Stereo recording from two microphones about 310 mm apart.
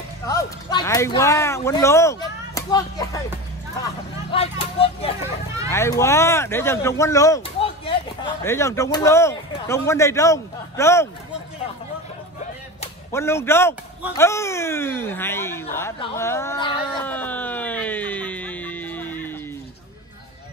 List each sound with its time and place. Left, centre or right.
0.3 s speech: centre
4.3 s speech: centre
13.1 s speech: centre